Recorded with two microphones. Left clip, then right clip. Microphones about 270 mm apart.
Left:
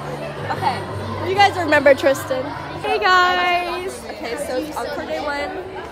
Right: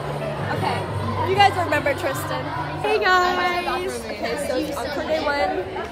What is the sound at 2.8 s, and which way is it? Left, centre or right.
Speech, centre.